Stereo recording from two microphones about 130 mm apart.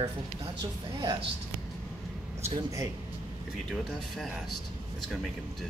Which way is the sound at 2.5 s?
25° right (ahead or behind).